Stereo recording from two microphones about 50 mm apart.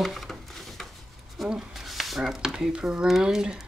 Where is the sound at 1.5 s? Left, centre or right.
Centre.